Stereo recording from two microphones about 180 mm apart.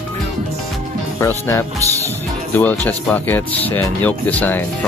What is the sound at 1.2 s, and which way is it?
Speech, 15° left (ahead or behind).